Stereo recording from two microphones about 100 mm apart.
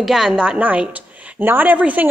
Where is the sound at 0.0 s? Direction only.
5° right (ahead or behind).